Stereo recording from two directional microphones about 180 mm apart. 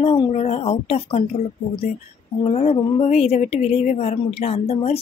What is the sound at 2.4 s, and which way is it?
A woman's voice, 35° left (ahead or behind).